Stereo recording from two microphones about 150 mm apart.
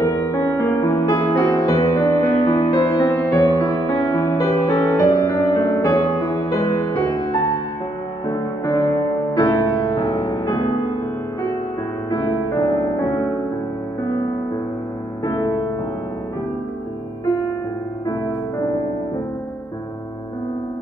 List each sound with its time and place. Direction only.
0.0 s music: 20° left (ahead or behind)
8.3 s music: 20° left (ahead or behind)
12.1 s music: 20° left (ahead or behind)
15.2 s music: 20° left (ahead or behind)